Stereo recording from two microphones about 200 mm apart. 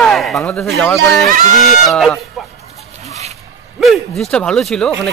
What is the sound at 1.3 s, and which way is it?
Speech, 40° right (ahead or behind).